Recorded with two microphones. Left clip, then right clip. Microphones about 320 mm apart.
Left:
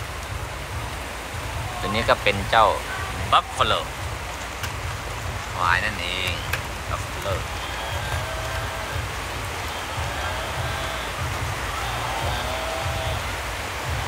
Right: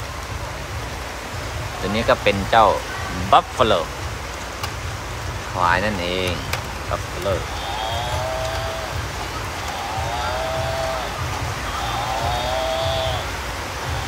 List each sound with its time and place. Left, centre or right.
2.0 s speech: centre
5.7 s speech: centre